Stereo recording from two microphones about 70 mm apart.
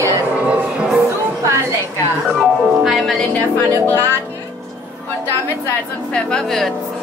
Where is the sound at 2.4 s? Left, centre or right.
Centre.